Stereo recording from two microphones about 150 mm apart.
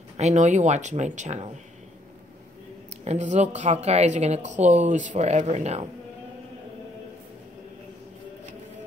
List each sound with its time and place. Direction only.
0.2 s a woman's voice: 50° right (ahead or behind)
3.1 s a woman's voice: 50° right (ahead or behind)